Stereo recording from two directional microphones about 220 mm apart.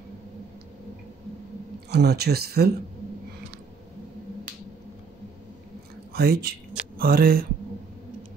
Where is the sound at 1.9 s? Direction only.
45° right (ahead or behind).